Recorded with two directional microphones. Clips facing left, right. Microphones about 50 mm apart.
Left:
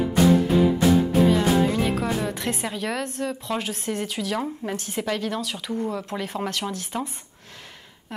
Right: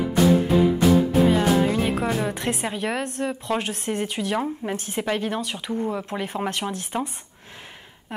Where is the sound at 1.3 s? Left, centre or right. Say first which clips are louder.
Right 1 dB; centre.